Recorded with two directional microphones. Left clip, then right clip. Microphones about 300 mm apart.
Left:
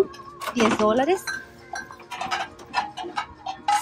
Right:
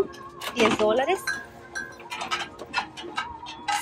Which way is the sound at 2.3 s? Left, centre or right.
Left.